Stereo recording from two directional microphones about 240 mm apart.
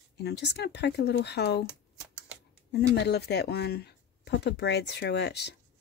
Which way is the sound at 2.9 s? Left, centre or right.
Left.